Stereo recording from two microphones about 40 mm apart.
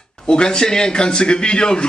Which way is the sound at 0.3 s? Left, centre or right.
Left.